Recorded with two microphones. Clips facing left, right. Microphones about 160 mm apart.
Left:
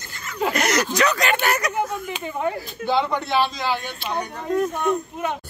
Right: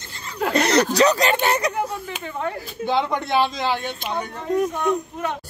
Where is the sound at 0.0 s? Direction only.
30° right (ahead or behind).